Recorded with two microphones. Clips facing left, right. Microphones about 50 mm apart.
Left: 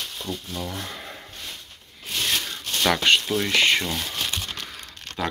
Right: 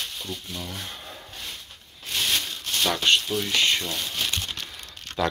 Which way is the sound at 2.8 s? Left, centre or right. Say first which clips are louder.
Left 3 dB; left.